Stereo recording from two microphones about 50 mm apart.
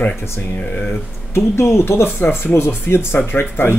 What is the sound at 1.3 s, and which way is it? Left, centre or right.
Speech, left.